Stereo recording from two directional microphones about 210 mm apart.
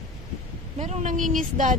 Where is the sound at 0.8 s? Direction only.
35° right (ahead or behind).